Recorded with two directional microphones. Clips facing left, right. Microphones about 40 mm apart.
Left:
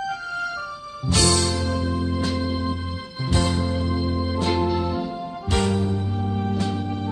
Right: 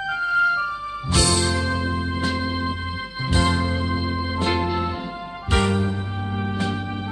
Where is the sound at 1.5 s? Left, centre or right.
Right.